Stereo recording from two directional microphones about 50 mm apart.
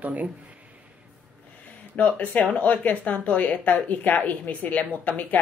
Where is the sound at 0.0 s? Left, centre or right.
Right.